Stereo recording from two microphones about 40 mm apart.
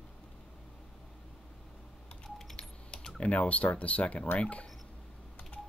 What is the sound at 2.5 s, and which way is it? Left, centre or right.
Keys jangling, left.